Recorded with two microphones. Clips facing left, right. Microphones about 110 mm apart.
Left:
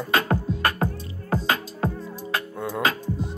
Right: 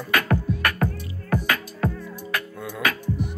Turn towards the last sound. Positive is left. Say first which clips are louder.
# even
turn(degrees=25)  # may be behind; listen again after turning